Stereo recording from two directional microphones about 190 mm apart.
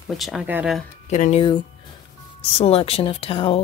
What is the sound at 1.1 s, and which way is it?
Speech, 40° left (ahead or behind).